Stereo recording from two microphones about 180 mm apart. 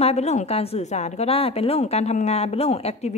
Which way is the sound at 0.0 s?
35° left (ahead or behind).